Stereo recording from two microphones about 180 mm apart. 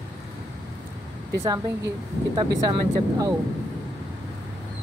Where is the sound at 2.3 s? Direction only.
25° right (ahead or behind).